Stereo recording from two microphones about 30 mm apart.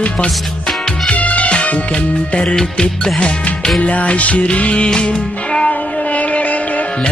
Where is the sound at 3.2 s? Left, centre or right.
Left.